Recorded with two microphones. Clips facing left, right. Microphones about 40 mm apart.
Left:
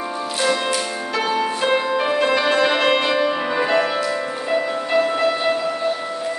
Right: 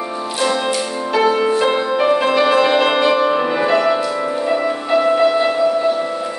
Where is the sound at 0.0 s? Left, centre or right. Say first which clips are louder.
Right 2 dB; centre.